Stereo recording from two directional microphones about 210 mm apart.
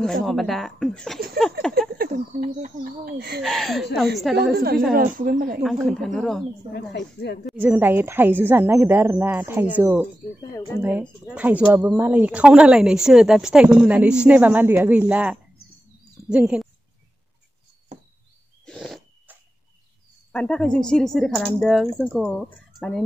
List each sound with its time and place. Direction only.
0.0 s speech: centre (ahead or behind)
1.8 s speech: 45° right (ahead or behind)
3.4 s speech: centre (ahead or behind)
4.6 s speech: 45° right (ahead or behind)
5.6 s speech: centre (ahead or behind)
6.7 s speech: 55° left (ahead or behind)
7.4 s a woman's voice: 5° right (ahead or behind)
18.7 s a sound: centre (ahead or behind)
20.3 s speech: 5° left (ahead or behind)